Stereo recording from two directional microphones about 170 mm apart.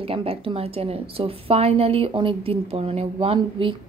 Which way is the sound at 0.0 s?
35° right (ahead or behind).